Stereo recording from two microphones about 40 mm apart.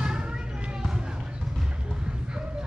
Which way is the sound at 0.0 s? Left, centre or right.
Centre.